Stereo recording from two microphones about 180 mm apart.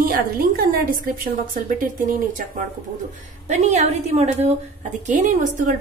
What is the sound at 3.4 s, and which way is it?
A woman's voice, 40° right (ahead or behind).